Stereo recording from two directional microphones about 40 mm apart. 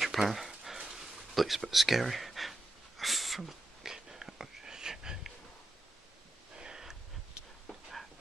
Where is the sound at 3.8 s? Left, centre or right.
Centre.